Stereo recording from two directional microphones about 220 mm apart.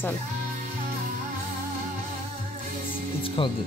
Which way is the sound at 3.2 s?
25° left (ahead or behind).